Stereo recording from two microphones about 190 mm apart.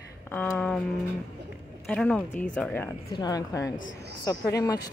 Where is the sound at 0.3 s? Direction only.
10° left (ahead or behind).